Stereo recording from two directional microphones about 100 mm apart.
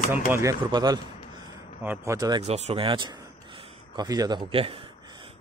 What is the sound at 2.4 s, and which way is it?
Speech, 90° right.